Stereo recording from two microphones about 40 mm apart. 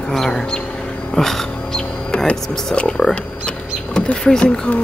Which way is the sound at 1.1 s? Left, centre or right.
Centre.